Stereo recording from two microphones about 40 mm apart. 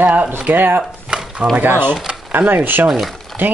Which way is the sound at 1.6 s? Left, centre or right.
Right.